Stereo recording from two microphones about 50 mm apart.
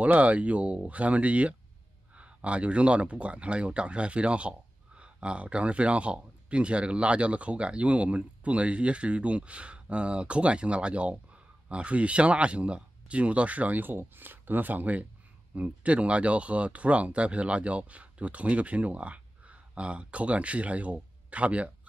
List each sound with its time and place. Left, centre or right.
0.0 s speech: right